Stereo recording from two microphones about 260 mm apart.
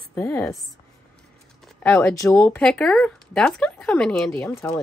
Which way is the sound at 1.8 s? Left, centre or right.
Centre.